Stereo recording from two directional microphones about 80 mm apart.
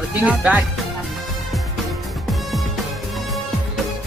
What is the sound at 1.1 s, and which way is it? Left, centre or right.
Music, centre.